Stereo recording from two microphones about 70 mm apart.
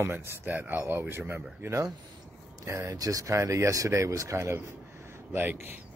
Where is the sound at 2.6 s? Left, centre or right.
Right.